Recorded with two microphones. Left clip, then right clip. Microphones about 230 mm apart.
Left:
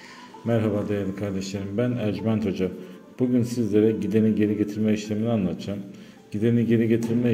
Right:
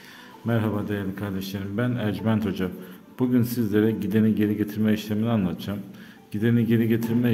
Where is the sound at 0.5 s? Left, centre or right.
Centre.